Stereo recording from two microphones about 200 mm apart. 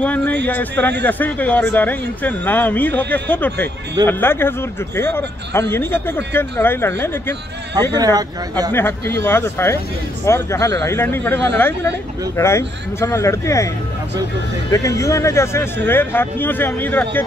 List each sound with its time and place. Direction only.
0.0 s a sound: 10° left (ahead or behind)
0.5 s a man's voice: 10° left (ahead or behind)
7.9 s speech: 20° right (ahead or behind)
8.7 s a man's voice: 10° left (ahead or behind)
14.7 s a man's voice: 15° left (ahead or behind)